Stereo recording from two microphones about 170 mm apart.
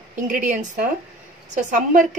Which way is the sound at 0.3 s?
50° right (ahead or behind).